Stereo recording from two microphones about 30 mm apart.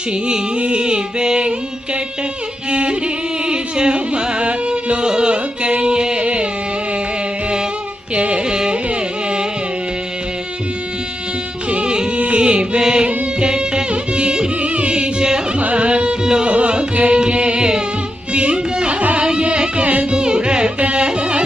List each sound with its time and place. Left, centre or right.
0.6 s a sound: right
2.7 s music: right
8.1 s music: right
11.7 s music: right
15.6 s music: right
16.4 s music: right
16.9 s carnatic music: right
18.3 s music: right
20.2 s music: right
20.8 s carnatic music: right